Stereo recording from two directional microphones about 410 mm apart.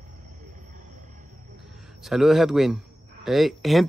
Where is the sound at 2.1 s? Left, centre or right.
Centre.